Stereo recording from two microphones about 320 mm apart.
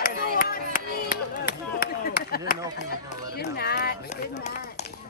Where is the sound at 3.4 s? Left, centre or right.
Left.